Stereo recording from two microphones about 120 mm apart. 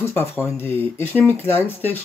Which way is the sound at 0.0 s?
20° left (ahead or behind).